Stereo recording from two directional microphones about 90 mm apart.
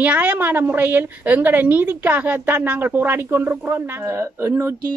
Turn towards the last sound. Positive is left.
turn(degrees=-30)  # may be behind; listen again after turning